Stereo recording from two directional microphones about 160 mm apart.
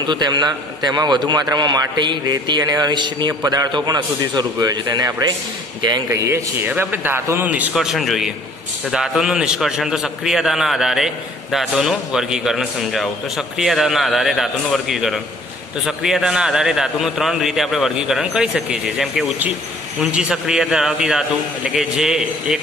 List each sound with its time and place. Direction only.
0.0 s a man's voice: 30° right (ahead or behind); by 22.6 s 5° right (ahead or behind)